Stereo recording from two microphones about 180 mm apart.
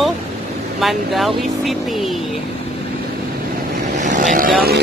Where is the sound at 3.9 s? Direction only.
45° right (ahead or behind).